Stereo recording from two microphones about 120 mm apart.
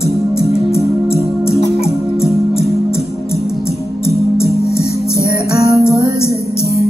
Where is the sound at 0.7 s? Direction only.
20° left (ahead or behind).